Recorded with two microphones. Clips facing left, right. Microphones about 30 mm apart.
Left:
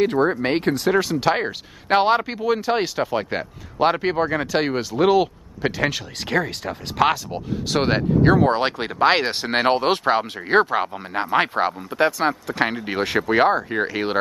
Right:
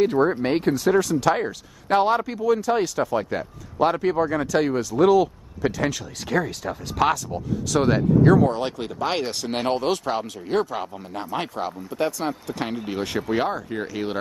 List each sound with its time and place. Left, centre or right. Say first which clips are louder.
0.0 s speech: left 1 dB; left
1.2 s speech: left 1 dB; left
2.4 s speech: even; left
6.3 s speech: left 1 dB; centre
7.1 s speech: left 1 dB; left